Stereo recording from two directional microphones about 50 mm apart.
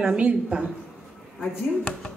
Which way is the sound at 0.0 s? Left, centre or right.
Right.